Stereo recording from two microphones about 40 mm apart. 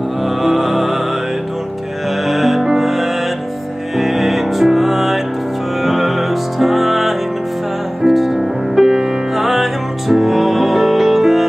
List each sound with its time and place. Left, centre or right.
0.4 s music: centre
2.2 s music: centre
8.7 s music: centre
9.3 s music: centre